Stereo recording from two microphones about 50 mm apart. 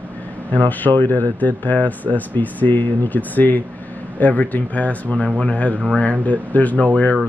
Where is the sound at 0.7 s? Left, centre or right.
Left.